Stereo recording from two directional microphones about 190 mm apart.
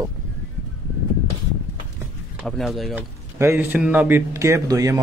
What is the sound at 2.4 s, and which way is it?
Speech, centre (ahead or behind).